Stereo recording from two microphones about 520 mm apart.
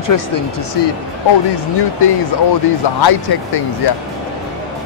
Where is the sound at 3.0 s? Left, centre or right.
Left.